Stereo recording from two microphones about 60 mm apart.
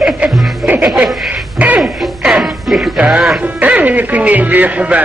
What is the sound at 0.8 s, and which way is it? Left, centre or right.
Speech, centre.